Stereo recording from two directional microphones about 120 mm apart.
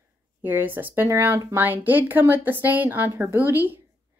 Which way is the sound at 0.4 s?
15° right (ahead or behind).